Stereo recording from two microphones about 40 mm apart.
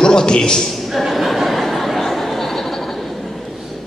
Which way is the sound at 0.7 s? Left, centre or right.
Centre.